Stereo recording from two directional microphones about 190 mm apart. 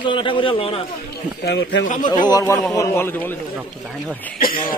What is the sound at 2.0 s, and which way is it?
A man's voice, 20° left (ahead or behind).